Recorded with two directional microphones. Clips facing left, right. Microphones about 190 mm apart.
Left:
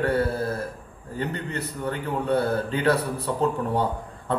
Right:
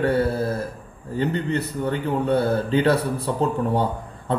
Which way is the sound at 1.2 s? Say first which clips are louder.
Right 6 dB; 25° right (ahead or behind).